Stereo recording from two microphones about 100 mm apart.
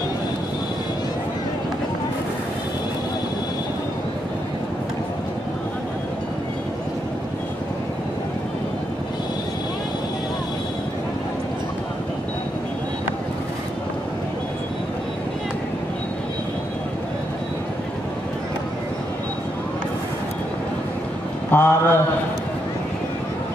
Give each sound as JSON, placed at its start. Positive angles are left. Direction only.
{"t": 21.5, "sound": "mantra", "side_deg": 15}